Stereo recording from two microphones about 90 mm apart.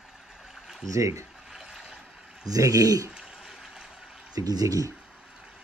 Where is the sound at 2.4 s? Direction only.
40° right (ahead or behind).